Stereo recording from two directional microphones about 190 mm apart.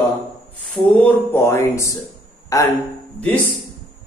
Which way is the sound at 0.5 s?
10° left (ahead or behind).